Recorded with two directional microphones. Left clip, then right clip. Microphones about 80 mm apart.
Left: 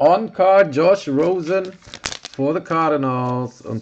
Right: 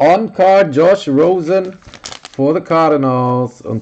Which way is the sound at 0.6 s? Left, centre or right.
Centre.